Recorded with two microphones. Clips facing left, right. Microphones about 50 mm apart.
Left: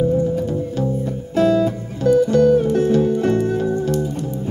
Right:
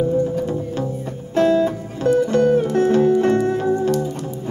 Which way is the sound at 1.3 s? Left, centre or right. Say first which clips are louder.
Even; right.